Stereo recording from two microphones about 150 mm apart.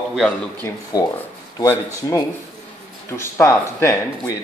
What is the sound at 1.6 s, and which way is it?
Speech, 15° left (ahead or behind).